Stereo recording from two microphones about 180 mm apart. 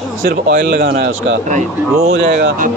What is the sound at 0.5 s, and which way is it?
Speech, 55° right (ahead or behind).